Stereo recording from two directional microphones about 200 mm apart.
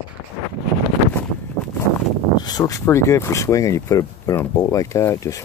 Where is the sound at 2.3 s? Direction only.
20° left (ahead or behind).